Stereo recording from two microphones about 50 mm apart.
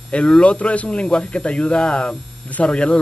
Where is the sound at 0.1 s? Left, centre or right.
Left.